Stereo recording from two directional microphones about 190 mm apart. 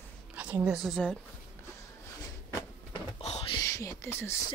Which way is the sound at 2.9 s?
30° left (ahead or behind).